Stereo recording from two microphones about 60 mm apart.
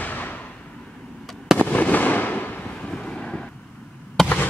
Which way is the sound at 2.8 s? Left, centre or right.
Centre.